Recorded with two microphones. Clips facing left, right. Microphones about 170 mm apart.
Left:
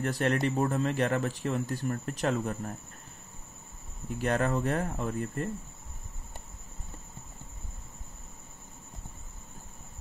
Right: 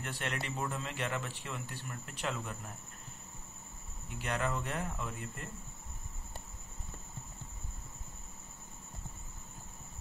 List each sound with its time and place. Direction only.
0.0 s speech: 40° left (ahead or behind)
4.2 s speech: 45° left (ahead or behind)